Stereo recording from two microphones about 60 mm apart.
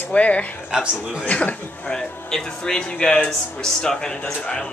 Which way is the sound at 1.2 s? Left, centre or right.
Left.